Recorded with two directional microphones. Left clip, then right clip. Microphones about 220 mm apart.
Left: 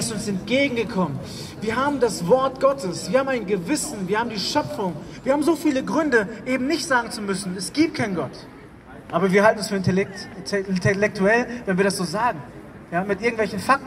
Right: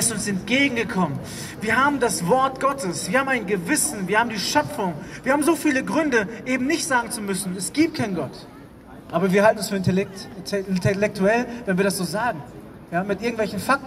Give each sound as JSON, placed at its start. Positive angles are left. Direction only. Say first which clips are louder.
{"t": 0.0, "sound": "speech", "louder": "right 2 dB", "side_deg": -20}
{"t": 7.2, "sound": "speech", "louder": "left 1 dB", "side_deg": -20}